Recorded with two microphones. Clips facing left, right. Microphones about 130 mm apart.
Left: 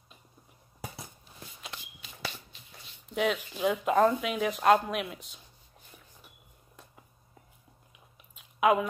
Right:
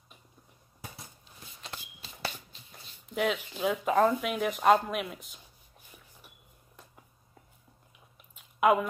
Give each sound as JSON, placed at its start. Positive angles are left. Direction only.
{"t": 1.7, "sound": "walk", "side_deg": -35}
{"t": 3.2, "sound": "speech", "side_deg": 0}
{"t": 8.4, "sound": "a sound", "side_deg": 0}